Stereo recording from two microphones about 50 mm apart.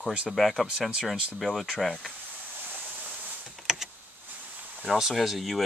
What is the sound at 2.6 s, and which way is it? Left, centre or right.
Waterfall, right.